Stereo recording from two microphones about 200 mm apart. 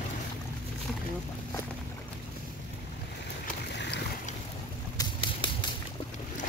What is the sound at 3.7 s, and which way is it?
Boat, 60° left (ahead or behind).